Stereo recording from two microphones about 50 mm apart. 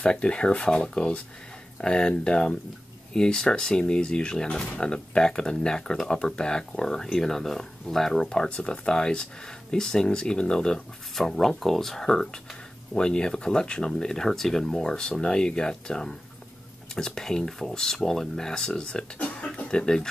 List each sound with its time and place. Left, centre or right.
0.0 s speech: centre